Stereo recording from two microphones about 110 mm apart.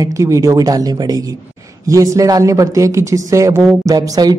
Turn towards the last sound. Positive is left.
turn(degrees=-35)  # may be behind; listen again after turning